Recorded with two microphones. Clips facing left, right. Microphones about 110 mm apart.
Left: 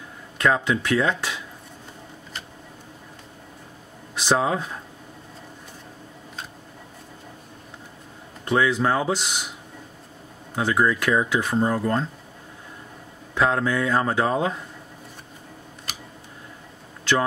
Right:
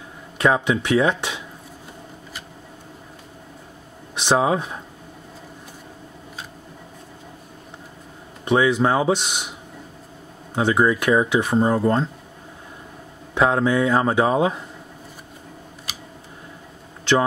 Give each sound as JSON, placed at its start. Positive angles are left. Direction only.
{"t": 0.4, "sound": "speech", "side_deg": -20}
{"t": 4.3, "sound": "speech", "side_deg": -15}
{"t": 8.5, "sound": "speech", "side_deg": -15}
{"t": 10.5, "sound": "speech", "side_deg": -20}
{"t": 13.3, "sound": "speech", "side_deg": -20}